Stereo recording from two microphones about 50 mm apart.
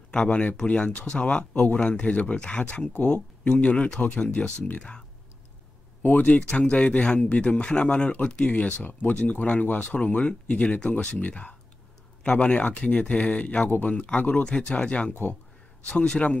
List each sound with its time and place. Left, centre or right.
0.1 s speech: left
6.0 s speech: left
6.5 s speech: left
13.7 s speech: left
13.9 s speech: left